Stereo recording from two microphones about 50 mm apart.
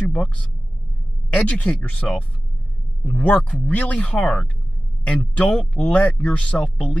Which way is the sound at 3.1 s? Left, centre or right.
Left.